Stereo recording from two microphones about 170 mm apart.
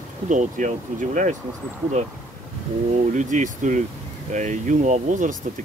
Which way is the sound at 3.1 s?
45° right (ahead or behind).